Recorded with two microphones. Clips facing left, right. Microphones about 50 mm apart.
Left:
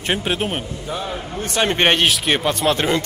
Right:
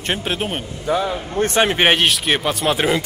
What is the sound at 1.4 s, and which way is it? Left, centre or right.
Speech, right.